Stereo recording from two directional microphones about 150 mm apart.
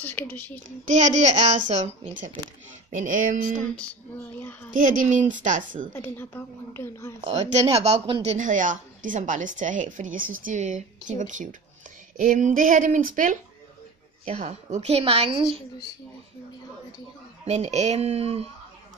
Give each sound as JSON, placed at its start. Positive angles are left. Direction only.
{"t": 0.0, "sound": "speech", "side_deg": 10}
{"t": 0.8, "sound": "speech", "side_deg": -50}
{"t": 3.7, "sound": "speech", "side_deg": 10}
{"t": 4.6, "sound": "speech", "side_deg": -60}
{"t": 5.9, "sound": "speech", "side_deg": 15}
{"t": 7.2, "sound": "speech", "side_deg": -45}
{"t": 14.2, "sound": "a woman's voice", "side_deg": -45}
{"t": 17.5, "sound": "speech", "side_deg": -50}